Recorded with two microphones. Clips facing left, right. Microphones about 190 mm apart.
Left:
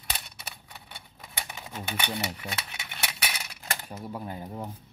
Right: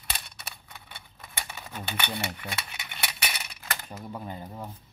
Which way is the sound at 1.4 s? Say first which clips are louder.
Even; 15° left (ahead or behind).